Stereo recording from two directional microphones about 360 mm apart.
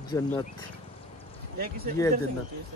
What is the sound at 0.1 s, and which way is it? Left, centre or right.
Speech, centre.